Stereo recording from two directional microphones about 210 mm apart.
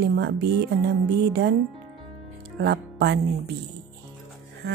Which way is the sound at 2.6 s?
50° right (ahead or behind).